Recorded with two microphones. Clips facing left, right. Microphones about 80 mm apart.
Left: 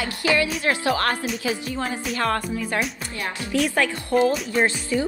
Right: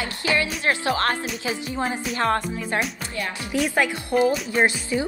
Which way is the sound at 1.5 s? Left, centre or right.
Right.